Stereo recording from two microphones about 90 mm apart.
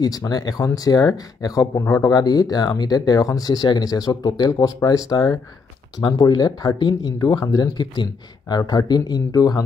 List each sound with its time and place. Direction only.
0.0 s speech: 45° left (ahead or behind)
6.0 s speech: 55° left (ahead or behind)